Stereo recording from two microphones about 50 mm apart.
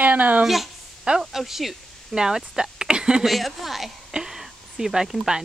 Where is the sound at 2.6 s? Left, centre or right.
Centre.